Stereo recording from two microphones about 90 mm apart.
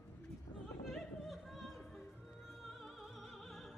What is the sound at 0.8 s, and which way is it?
Opera, centre (ahead or behind).